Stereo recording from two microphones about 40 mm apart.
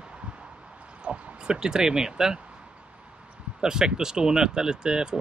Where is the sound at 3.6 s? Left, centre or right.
Centre.